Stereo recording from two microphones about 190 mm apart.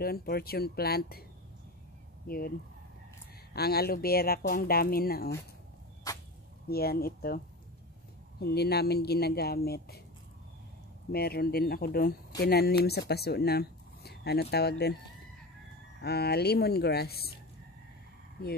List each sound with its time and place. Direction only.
0.0 s speech: 55° left (ahead or behind)
2.2 s speech: 50° left (ahead or behind)
3.5 s speech: 55° left (ahead or behind)
6.7 s speech: 55° left (ahead or behind)
11.1 s speech: 55° left (ahead or behind)
16.0 s speech: 60° left (ahead or behind)